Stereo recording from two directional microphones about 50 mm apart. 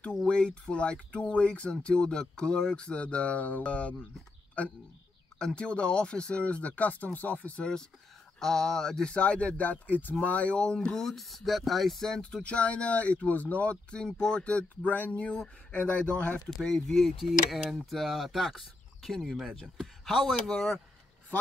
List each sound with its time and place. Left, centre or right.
0.3 s speech: centre
5.4 s speech: left
8.4 s speech: centre
9.1 s speech: left; by 19.4 s centre
19.5 s speech: centre
20.1 s speech: centre